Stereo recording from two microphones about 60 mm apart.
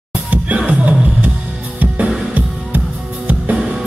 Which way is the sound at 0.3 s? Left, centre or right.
Right.